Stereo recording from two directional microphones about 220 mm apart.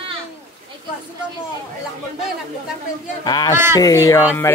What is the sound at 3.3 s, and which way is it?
Speech, 20° left (ahead or behind).